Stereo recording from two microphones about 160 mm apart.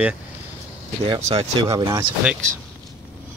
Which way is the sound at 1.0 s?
40° right (ahead or behind).